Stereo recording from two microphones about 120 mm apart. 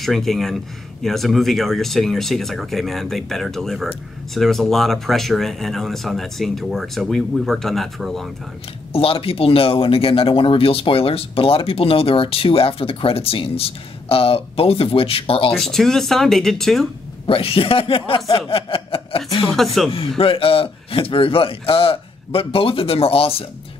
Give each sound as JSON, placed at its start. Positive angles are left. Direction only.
{"t": 0.0, "sound": "speech", "side_deg": 0}
{"t": 8.9, "sound": "speech", "side_deg": 50}
{"t": 15.5, "sound": "speech", "side_deg": 0}
{"t": 17.3, "sound": "speech", "side_deg": 50}
{"t": 18.5, "sound": "chuckle", "side_deg": 50}
{"t": 19.5, "sound": "speech", "side_deg": 0}
{"t": 20.2, "sound": "speech", "side_deg": 50}